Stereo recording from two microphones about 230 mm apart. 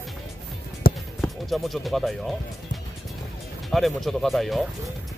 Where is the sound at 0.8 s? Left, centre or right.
Left.